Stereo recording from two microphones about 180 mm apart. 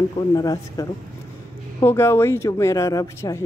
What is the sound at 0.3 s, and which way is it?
Speech, 20° left (ahead or behind).